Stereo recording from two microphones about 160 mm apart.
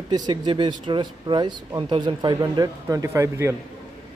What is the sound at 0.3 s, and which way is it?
Speech, 30° right (ahead or behind).